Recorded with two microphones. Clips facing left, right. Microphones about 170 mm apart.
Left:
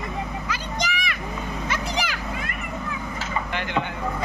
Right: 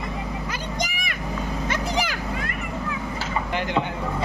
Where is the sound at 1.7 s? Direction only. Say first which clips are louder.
Right 2 dB; 50° right (ahead or behind).